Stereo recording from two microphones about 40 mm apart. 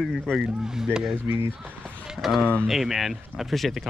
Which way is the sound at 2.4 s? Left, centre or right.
Left.